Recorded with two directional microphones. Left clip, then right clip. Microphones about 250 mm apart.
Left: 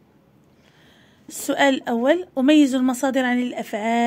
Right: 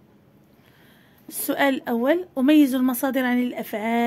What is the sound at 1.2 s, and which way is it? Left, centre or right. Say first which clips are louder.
Speech: left 3 dB; centre.